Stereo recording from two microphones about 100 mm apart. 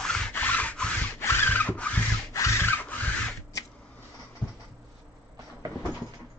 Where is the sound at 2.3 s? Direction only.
30° left (ahead or behind).